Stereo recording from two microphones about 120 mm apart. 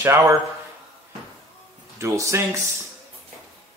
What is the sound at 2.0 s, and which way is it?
Speech, 25° right (ahead or behind).